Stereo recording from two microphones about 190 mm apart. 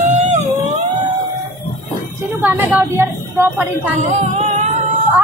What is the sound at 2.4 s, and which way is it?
A woman's voice, 10° right (ahead or behind).